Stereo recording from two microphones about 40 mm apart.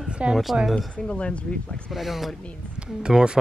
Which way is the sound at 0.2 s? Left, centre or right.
Right.